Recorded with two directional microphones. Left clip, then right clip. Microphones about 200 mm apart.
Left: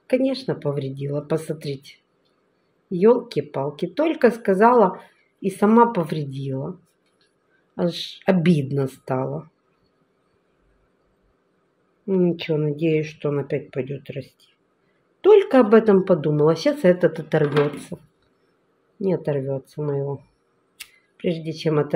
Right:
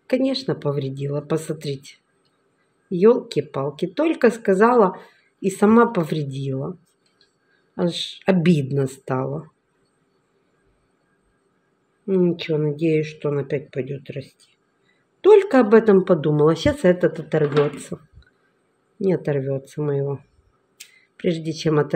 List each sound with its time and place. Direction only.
0.0 s speech: 10° right (ahead or behind)
7.7 s speech: 10° right (ahead or behind)
12.1 s speech: 5° right (ahead or behind)
17.9 s speech: 15° right (ahead or behind)
21.2 s speech: 15° right (ahead or behind)